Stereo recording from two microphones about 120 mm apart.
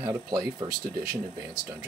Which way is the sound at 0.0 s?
30° right (ahead or behind).